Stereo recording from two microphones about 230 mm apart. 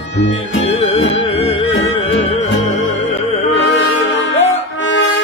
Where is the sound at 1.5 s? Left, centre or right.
Left.